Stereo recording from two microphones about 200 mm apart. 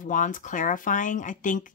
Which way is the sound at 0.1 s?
40° left (ahead or behind).